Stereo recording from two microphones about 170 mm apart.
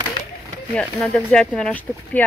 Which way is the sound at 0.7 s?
5° left (ahead or behind).